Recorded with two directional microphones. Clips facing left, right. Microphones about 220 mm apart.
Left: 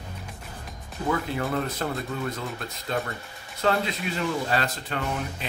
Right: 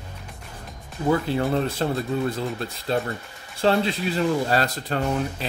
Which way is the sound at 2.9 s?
30° right (ahead or behind).